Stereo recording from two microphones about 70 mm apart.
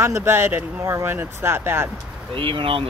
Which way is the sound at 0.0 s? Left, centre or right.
Right.